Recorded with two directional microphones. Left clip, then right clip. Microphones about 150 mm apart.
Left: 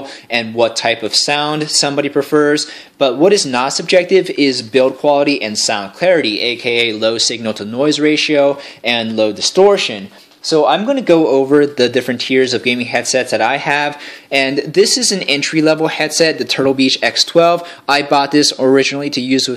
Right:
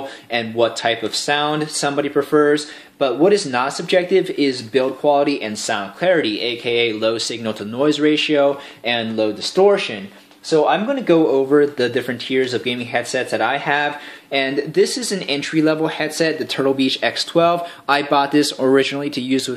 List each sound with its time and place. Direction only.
0.3 s speech: 45° left (ahead or behind)